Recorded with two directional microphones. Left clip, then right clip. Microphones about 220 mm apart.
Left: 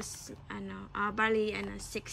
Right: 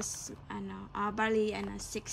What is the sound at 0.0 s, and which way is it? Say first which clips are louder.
A woman's voice: right 3 dB; 10° right (ahead or behind).